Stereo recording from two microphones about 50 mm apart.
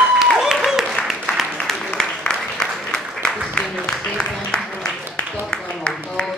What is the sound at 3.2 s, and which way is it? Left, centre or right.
Music, centre.